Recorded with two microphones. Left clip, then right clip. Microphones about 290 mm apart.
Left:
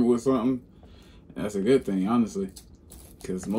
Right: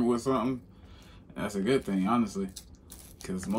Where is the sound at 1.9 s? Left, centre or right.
Right.